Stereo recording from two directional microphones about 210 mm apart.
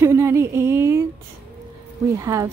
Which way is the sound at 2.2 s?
15° right (ahead or behind).